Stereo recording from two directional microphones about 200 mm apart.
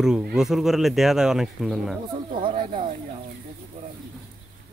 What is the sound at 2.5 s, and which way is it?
Speech, 40° right (ahead or behind).